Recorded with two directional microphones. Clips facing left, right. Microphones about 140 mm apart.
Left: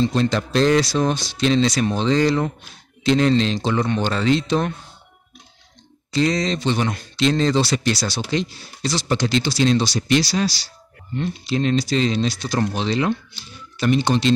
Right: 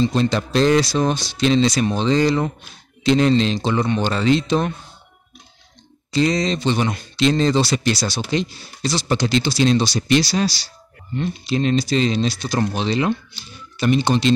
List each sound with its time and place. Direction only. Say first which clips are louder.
0.0 s speech: right 1 dB; 10° right (ahead or behind)
6.1 s speech: right 1 dB; 15° right (ahead or behind)